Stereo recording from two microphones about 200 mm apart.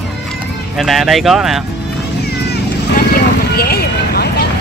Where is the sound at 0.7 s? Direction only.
Centre (ahead or behind).